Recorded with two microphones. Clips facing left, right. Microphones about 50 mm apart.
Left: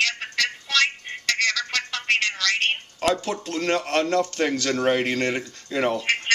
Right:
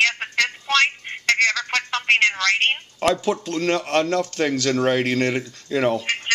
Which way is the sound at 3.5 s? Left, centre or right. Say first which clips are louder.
Even; centre.